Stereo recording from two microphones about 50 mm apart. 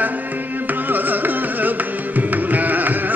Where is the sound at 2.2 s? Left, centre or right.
Right.